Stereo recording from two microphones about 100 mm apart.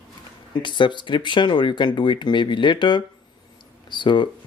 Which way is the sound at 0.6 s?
50° left (ahead or behind).